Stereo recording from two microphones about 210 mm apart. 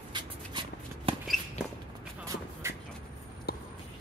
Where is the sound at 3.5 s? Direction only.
50° left (ahead or behind).